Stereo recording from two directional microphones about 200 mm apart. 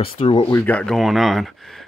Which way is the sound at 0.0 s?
25° left (ahead or behind).